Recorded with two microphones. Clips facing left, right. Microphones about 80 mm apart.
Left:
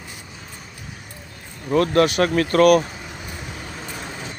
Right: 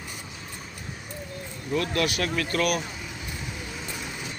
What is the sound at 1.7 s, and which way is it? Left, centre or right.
Speech, left.